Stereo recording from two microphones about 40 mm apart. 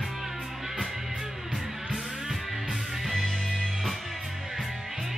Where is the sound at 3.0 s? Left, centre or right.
Centre.